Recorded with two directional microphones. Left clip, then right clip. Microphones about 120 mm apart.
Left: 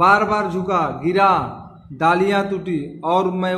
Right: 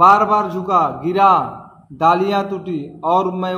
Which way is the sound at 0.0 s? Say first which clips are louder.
Right 4 dB; 20° left (ahead or behind).